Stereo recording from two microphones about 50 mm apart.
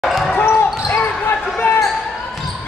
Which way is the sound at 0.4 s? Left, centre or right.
Left.